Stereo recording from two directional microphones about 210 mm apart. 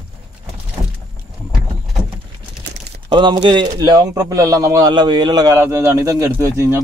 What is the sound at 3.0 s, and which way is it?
Speech, 20° right (ahead or behind).